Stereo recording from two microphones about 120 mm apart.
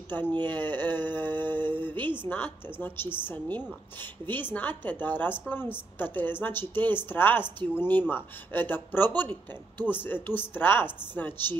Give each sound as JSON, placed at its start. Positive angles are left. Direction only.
{"t": 0.1, "sound": "a woman's voice", "side_deg": 15}